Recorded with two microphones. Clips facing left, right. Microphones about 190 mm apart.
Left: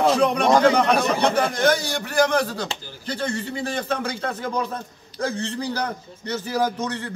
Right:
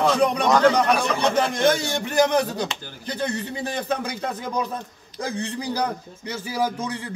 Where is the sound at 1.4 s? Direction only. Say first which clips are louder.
Even; 25° right (ahead or behind); by 6.9 s 10° right (ahead or behind).